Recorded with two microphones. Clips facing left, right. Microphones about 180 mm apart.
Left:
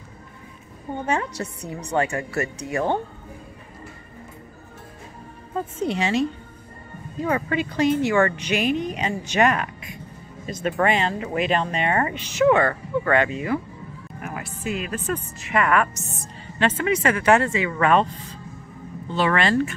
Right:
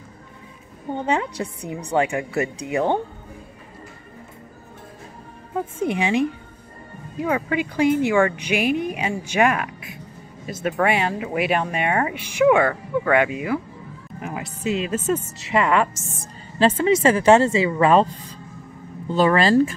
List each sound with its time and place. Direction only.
1.0 s speech: 15° right (ahead or behind)
5.5 s speech: 10° right (ahead or behind)
14.2 s music: 20° right (ahead or behind)
14.6 s speech: 25° right (ahead or behind)
19.0 s speech: 40° right (ahead or behind)